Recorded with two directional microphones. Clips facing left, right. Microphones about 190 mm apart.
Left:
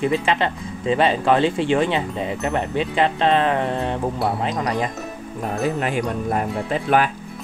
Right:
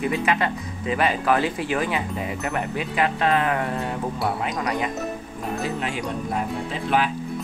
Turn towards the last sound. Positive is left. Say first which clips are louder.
# left 4 dB
turn(degrees=50)  # may be behind; listen again after turning